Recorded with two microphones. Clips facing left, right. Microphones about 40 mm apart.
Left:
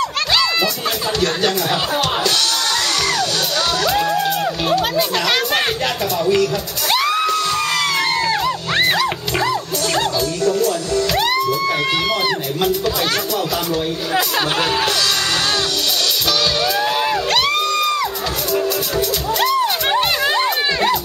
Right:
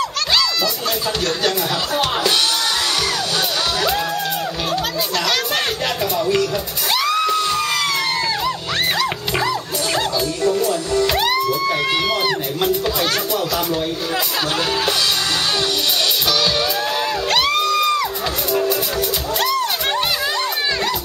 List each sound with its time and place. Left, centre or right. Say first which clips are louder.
6.1 s speech: left 3 dB; centre
6.9 s music: left 1 dB; centre
8.5 s music: left 3 dB; centre
10.4 s music: left 1 dB; centre
11.1 s music: left 1 dB; centre
12.3 s a sound: left 1 dB; centre
17.3 s a sound: even; centre
18.5 s music: even; centre
19.4 s music: left 3 dB; centre